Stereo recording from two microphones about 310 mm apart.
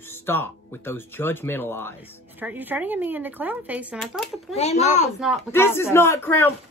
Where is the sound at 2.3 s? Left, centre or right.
Centre.